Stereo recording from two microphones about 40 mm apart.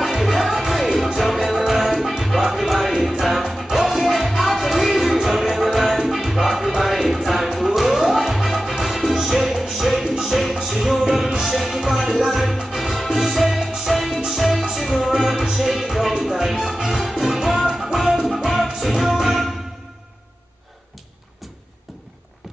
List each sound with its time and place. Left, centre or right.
0.0 s music: centre
17.6 s music: centre